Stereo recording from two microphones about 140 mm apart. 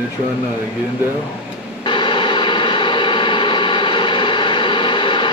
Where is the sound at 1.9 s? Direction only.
35° left (ahead or behind).